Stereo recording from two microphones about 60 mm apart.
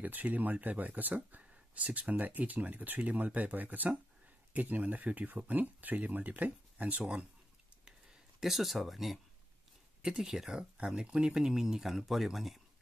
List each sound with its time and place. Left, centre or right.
0.0 s speech: right
7.8 s a sound: centre
10.0 s speech: centre